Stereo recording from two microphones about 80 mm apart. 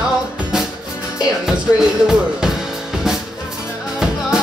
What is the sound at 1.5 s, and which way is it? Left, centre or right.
Music, centre.